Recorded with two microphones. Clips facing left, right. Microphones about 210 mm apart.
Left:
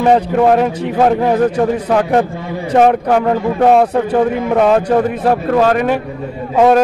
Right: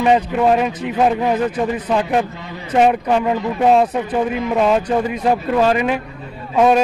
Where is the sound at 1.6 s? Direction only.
65° left (ahead or behind); by 2.6 s 50° left (ahead or behind).